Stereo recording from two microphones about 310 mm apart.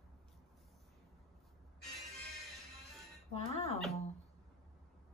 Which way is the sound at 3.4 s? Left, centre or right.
Centre.